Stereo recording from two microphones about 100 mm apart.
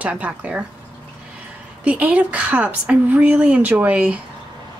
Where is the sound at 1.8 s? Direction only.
15° right (ahead or behind).